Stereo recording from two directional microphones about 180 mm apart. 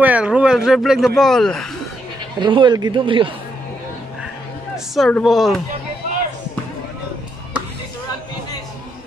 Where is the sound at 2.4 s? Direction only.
25° right (ahead or behind).